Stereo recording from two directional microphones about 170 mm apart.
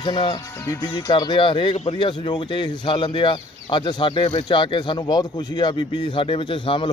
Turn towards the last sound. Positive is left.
turn(degrees=30)  # may be behind; listen again after turning